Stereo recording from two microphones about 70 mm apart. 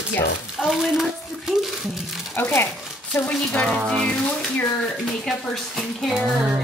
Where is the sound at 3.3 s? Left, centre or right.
Centre.